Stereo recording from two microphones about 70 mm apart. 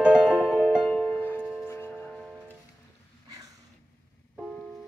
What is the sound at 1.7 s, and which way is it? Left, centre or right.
Music, left.